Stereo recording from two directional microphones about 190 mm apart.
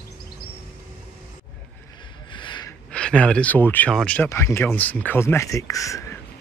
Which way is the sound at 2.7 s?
5° left (ahead or behind).